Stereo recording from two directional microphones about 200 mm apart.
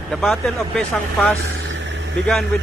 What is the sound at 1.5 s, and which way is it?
Vehicle, 65° right (ahead or behind).